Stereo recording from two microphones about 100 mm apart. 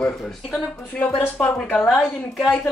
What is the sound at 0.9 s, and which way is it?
Speech, 15° left (ahead or behind).